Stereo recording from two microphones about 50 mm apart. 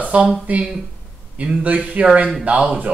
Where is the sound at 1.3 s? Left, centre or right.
Right.